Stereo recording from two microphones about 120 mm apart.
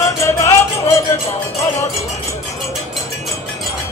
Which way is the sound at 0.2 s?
25° left (ahead or behind).